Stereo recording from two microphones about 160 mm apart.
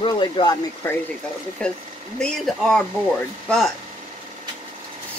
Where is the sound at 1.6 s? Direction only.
5° left (ahead or behind).